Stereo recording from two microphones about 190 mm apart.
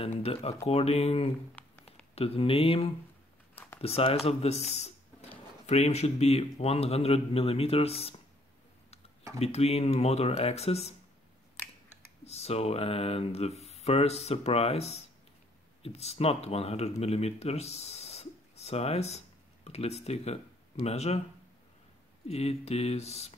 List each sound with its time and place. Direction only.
0.0 s speech: 30° left (ahead or behind)
1.6 s a sound: 10° left (ahead or behind)
2.1 s speech: 30° left (ahead or behind)
9.4 s speech: 35° left (ahead or behind)
12.3 s speech: 35° left (ahead or behind)
22.3 s speech: 35° left (ahead or behind)